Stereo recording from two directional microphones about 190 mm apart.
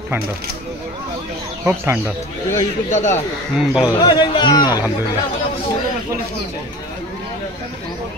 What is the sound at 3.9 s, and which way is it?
Speech, 25° left (ahead or behind).